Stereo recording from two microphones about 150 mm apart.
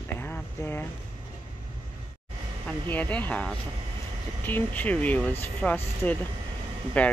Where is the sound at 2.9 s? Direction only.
10° left (ahead or behind).